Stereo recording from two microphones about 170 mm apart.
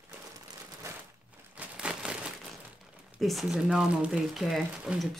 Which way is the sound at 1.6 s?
5° right (ahead or behind).